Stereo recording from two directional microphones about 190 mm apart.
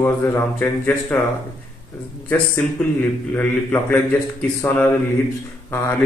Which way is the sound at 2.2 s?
10° left (ahead or behind).